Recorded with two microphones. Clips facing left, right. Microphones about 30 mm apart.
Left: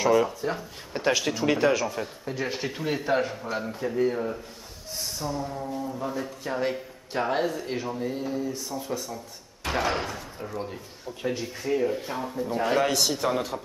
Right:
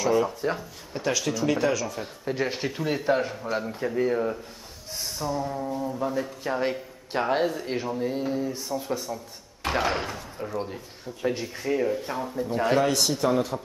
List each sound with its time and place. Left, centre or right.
0.4 s speech: centre
0.9 s speech: left
2.2 s speech: centre
2.7 s speech: centre
6.0 s speech: centre
12.1 s a man's voice: centre
12.4 s speech: centre
12.8 s a man's voice: centre